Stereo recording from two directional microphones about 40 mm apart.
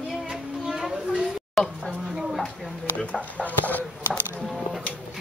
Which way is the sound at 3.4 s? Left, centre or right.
Left.